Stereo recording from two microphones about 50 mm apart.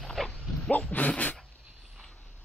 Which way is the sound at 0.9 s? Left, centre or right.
Left.